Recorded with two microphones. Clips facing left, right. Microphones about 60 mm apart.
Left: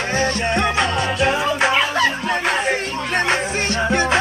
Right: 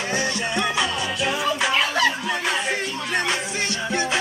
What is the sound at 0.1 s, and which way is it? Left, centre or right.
Music, left.